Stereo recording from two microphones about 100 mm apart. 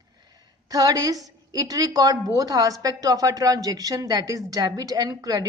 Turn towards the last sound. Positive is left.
turn(degrees=-35)  # may be behind; listen again after turning